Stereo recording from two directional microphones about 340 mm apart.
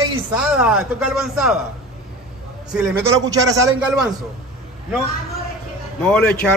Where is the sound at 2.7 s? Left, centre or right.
Centre.